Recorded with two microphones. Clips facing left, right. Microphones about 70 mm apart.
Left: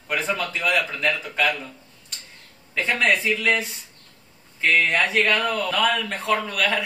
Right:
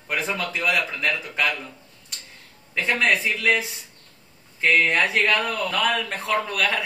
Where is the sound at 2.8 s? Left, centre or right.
Centre.